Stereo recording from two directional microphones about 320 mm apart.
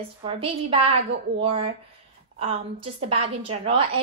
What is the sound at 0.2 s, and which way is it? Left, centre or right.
A woman's voice, centre.